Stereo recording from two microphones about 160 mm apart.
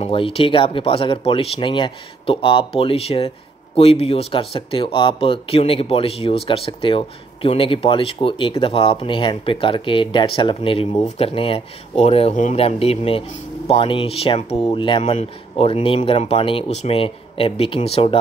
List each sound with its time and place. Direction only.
0.0 s speech: 35° left (ahead or behind)